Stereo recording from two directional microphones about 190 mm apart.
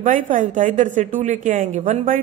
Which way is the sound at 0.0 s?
45° right (ahead or behind).